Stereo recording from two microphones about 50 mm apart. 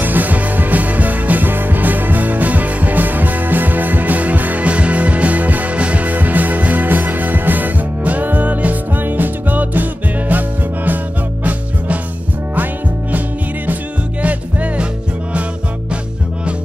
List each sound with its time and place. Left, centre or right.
0.0 s music: right
14.2 s music: right